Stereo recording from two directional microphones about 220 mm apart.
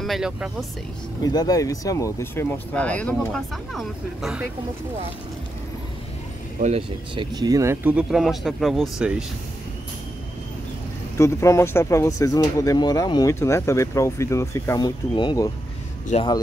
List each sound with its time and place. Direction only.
0.0 s speech: centre (ahead or behind)
1.2 s speech: 15° left (ahead or behind); by 4.5 s centre (ahead or behind)
6.6 s speech: 25° right (ahead or behind); by 9.2 s 5° right (ahead or behind)
11.1 s speech: 15° left (ahead or behind)
16.1 s a man's voice: 30° left (ahead or behind)